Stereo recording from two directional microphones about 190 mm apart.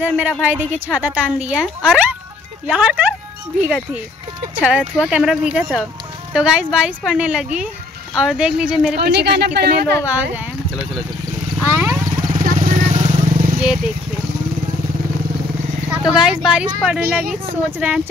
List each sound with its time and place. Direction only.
0.0 s speech: 5° right (ahead or behind)
8.9 s speech: 55° right (ahead or behind)
11.6 s vehicle: 15° right (ahead or behind)
12.3 s vehicle: 40° right (ahead or behind)
15.9 s speech: centre (ahead or behind)